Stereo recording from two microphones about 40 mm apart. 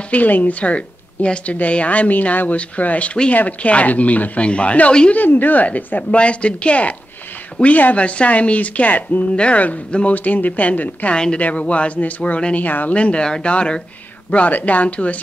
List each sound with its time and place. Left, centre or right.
0.1 s a woman's voice: left
5.1 s speech: left
6.1 s speech: left
9.3 s speech: left
10.1 s speech: left
12.5 s speech: left
12.9 s speech: left
14.5 s speech: left